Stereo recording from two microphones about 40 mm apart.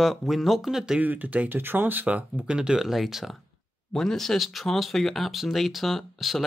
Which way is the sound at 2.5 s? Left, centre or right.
Centre.